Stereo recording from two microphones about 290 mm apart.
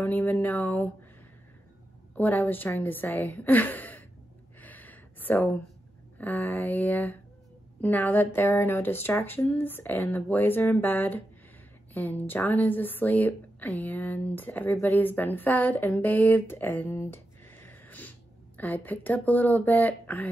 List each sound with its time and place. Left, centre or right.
0.0 s speech: centre
2.1 s speech: centre
4.6 s a sound: centre
6.1 s speech: centre